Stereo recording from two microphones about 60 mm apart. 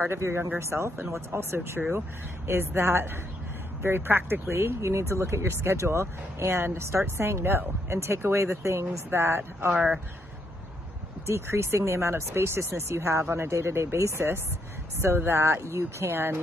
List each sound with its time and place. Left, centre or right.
0.0 s speech: right
11.2 s speech: right